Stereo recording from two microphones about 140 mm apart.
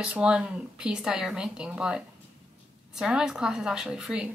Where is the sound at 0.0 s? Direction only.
5° right (ahead or behind).